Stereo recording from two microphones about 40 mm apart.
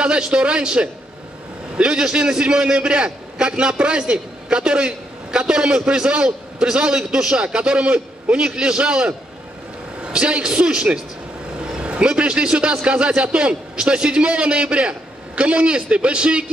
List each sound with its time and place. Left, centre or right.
0.0 s a man's voice: right